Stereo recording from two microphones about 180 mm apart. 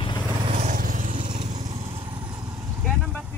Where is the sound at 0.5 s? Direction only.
45° right (ahead or behind).